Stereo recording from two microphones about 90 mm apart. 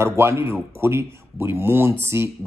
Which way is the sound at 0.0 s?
30° right (ahead or behind).